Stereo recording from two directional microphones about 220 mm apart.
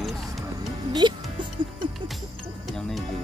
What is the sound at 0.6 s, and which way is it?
Music, 20° right (ahead or behind).